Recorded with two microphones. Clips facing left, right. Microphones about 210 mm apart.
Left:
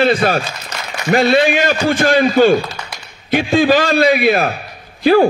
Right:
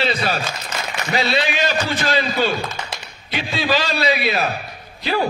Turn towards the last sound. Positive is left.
turn(degrees=50)  # may be behind; listen again after turning